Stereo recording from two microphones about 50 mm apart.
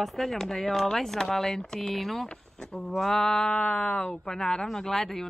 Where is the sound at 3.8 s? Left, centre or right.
Left.